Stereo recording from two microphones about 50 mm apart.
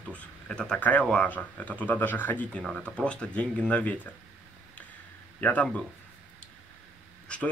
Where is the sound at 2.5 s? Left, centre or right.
Left.